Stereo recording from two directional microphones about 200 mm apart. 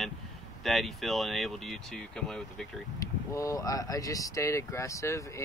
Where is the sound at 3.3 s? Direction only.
15° left (ahead or behind).